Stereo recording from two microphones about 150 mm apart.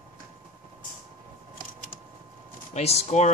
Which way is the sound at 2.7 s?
45° left (ahead or behind).